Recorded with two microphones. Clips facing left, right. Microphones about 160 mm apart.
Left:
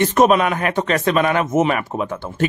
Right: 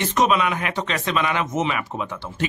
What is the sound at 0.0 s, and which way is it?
Speech, 50° left (ahead or behind).